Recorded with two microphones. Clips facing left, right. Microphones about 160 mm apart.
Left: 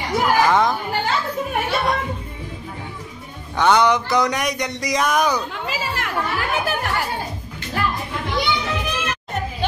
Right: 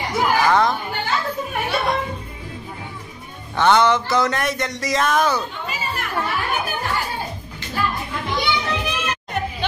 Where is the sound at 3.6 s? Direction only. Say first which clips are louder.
Even; 10° left (ahead or behind).